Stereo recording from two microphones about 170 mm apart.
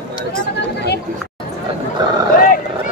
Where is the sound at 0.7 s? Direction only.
75° left (ahead or behind).